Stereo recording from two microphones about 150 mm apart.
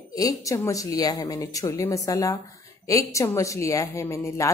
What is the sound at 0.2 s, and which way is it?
A woman's voice, 25° left (ahead or behind).